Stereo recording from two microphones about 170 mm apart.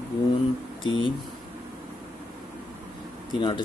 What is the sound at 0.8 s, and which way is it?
Speech, 25° left (ahead or behind).